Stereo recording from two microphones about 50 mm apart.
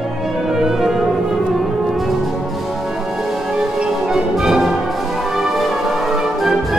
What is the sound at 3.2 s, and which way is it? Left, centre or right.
Orchestra, centre.